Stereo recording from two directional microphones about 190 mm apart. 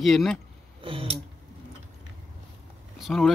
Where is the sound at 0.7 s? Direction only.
30° right (ahead or behind).